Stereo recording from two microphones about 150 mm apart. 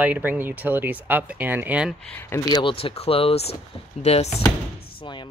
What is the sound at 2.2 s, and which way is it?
Speech, 20° left (ahead or behind).